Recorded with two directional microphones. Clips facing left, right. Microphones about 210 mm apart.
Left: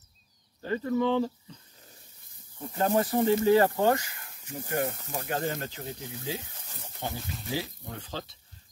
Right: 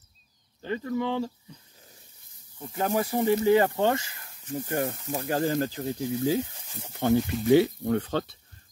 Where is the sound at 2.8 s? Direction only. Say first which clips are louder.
Left 1 dB; 10° right (ahead or behind); by 4.3 s 25° right (ahead or behind).